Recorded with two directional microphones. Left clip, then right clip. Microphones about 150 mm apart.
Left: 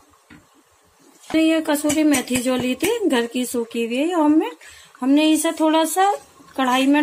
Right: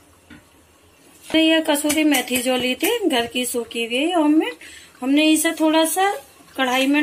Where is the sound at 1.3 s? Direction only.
60° left (ahead or behind).